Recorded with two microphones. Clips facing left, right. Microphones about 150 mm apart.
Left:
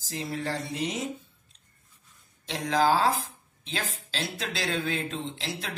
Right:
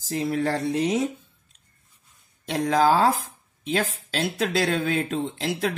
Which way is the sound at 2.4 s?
50° right (ahead or behind).